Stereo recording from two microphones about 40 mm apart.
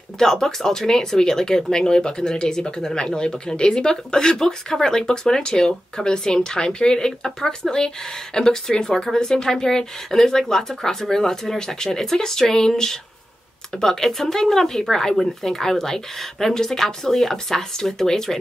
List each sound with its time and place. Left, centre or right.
0.2 s speech: centre